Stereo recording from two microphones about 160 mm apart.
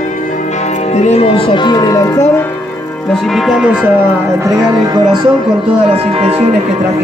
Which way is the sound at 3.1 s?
Centre (ahead or behind).